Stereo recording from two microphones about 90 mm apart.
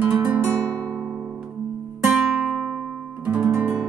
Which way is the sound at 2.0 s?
5° right (ahead or behind).